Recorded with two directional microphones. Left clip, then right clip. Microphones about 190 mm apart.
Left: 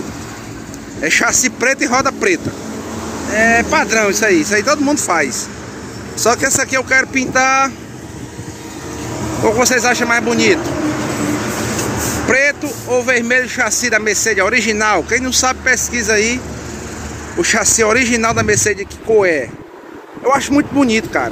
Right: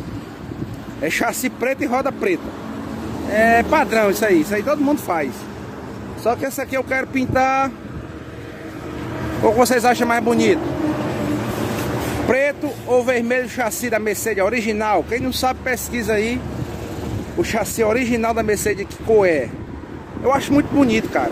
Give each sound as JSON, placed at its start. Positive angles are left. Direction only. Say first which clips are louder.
{"t": 1.0, "sound": "speech", "louder": "left 7 dB", "side_deg": -15}
{"t": 6.2, "sound": "speech", "louder": "left 6 dB", "side_deg": 5}
{"t": 6.6, "sound": "speech", "louder": "left 7 dB", "side_deg": -10}
{"t": 9.6, "sound": "speech", "louder": "left 2 dB", "side_deg": -20}
{"t": 12.3, "sound": "speech", "louder": "left 5 dB", "side_deg": -15}
{"t": 17.4, "sound": "speech", "louder": "left 6 dB", "side_deg": -10}